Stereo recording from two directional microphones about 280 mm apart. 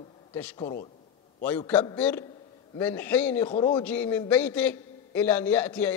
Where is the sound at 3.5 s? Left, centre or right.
Centre.